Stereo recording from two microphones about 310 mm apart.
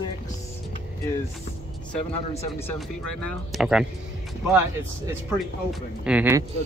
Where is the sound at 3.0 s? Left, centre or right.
Left.